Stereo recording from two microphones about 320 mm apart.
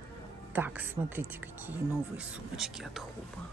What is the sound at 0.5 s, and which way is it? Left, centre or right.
A woman's voice, centre.